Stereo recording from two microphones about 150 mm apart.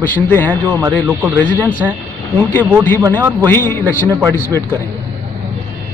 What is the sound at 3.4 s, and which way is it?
Speech, 15° left (ahead or behind).